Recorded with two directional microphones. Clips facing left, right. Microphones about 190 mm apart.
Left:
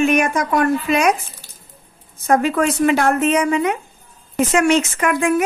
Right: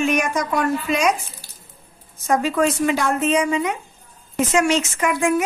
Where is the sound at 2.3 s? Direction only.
60° left (ahead or behind).